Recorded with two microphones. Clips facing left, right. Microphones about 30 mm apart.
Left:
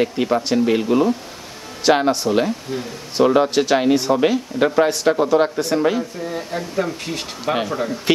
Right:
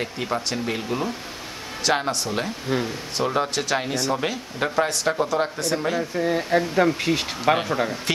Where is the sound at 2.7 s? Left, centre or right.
Right.